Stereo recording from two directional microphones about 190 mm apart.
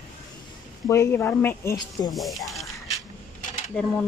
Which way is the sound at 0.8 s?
15° left (ahead or behind).